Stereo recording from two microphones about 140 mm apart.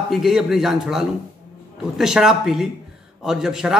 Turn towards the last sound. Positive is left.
turn(degrees=-5)  # may be behind; listen again after turning